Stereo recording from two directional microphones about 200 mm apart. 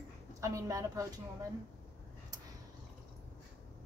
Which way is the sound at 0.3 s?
15° right (ahead or behind).